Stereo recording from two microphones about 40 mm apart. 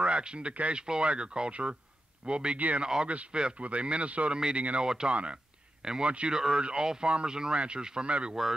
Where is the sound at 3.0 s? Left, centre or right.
Right.